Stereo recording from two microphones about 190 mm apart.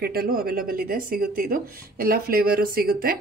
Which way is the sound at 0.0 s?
50° right (ahead or behind).